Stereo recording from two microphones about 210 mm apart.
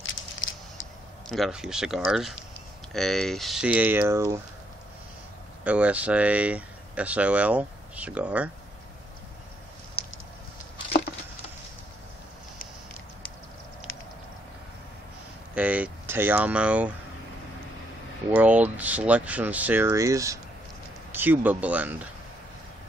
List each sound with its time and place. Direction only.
1.3 s speech: centre (ahead or behind)
5.6 s speech: 5° right (ahead or behind)
10.0 s a sound: 30° left (ahead or behind)
15.5 s speech: 5° right (ahead or behind)
18.3 s speech: 5° right (ahead or behind)